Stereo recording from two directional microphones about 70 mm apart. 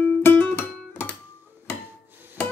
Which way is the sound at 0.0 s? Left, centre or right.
Left.